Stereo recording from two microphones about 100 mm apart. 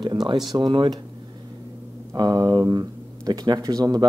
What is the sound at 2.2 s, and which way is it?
Speech, 45° right (ahead or behind).